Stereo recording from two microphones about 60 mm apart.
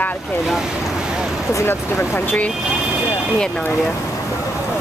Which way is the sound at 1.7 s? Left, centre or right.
Left.